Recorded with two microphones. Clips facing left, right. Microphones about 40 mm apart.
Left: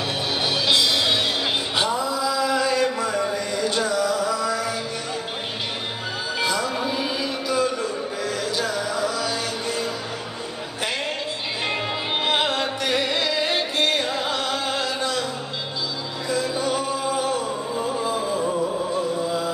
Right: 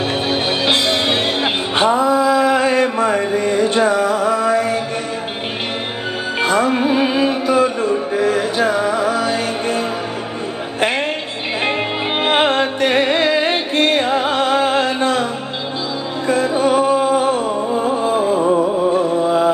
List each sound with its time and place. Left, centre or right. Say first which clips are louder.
0.3 s music: right 3 dB; right
6.4 s music: right 9 dB; right
10.8 s a sound: right 9 dB; right
12.2 s music: right 8 dB; right
16.3 s music: right 9 dB; right
18.4 s music: right 8 dB; right
18.9 s music: right 9 dB; right